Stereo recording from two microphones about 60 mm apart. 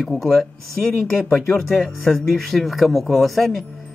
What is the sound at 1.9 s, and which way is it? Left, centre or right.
Speech, centre.